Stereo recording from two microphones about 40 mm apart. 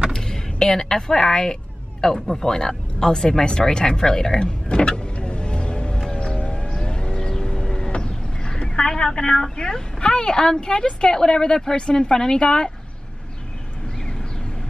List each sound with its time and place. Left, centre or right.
0.1 s speech: centre
6.1 s siren: left
6.7 s vehicle: left
7.9 s speech: left